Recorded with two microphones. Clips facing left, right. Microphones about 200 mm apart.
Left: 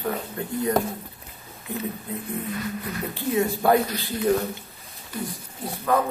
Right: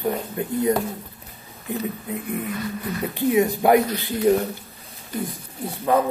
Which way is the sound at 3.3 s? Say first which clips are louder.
Right 3 dB; 15° right (ahead or behind).